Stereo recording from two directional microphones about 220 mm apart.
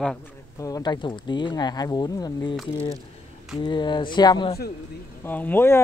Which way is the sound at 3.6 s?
20° left (ahead or behind).